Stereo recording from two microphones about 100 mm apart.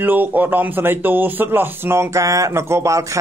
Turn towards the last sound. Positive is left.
turn(degrees=-30)  # may be behind; listen again after turning